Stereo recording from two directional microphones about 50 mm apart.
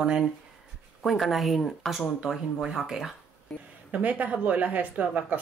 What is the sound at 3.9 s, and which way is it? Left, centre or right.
A woman's voice, right.